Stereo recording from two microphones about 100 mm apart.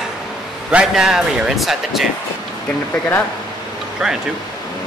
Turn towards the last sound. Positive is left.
turn(degrees=-10)  # may be behind; listen again after turning